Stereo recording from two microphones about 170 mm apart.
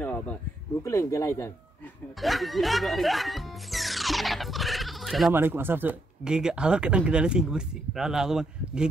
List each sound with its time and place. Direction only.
0.0 s a sound: 10° left (ahead or behind)
0.8 s speech: 15° left (ahead or behind)
2.1 s speech: centre (ahead or behind)
5.3 s speech: 10° right (ahead or behind)